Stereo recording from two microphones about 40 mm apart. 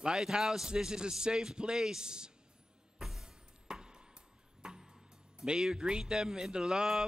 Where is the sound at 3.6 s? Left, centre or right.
Centre.